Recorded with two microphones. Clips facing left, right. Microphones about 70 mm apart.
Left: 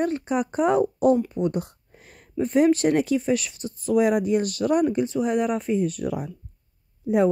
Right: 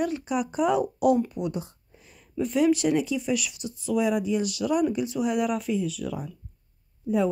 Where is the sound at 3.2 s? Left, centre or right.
Left.